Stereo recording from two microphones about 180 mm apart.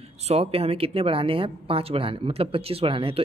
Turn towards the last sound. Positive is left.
turn(degrees=-30)  # may be behind; listen again after turning